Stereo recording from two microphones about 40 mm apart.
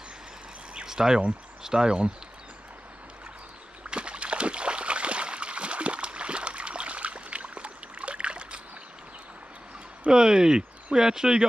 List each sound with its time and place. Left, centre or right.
0.8 s speech: centre
3.9 s a sound: right
10.1 s speech: centre